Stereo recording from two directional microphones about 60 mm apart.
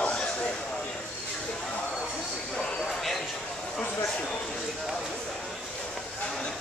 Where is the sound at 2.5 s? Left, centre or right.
Centre.